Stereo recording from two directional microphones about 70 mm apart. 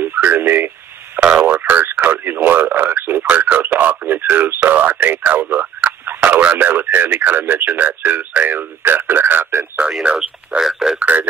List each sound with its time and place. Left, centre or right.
0.0 s a sound: right
1.4 s radio: right
3.3 s radio: right
6.6 s speech: right
10.0 s speech: centre
11.0 s speech: right